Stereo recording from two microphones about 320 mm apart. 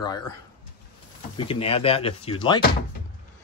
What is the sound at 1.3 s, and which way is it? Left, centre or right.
Speech, centre.